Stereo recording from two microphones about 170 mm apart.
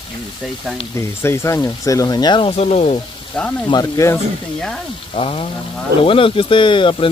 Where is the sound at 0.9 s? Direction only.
15° left (ahead or behind).